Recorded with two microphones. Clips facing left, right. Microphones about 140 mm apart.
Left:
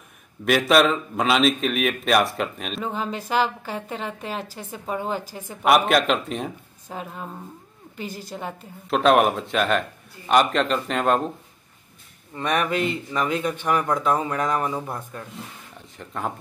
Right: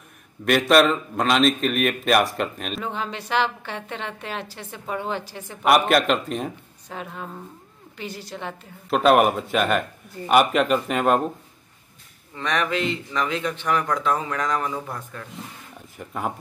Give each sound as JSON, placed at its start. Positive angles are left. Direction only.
{"t": 0.5, "sound": "speech", "side_deg": 0}
{"t": 4.2, "sound": "a woman's voice", "side_deg": 40}
{"t": 4.6, "sound": "speech", "side_deg": 5}
{"t": 8.0, "sound": "a woman's voice", "side_deg": 45}
{"t": 8.3, "sound": "speech", "side_deg": 5}
{"t": 12.4, "sound": "speech", "side_deg": 10}
{"t": 12.6, "sound": "a woman's voice", "side_deg": 45}
{"t": 13.1, "sound": "speech", "side_deg": 10}
{"t": 14.6, "sound": "speech", "side_deg": 25}
{"t": 16.0, "sound": "speech", "side_deg": -10}